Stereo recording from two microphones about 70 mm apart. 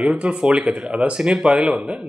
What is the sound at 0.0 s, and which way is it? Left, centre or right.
Speech, centre.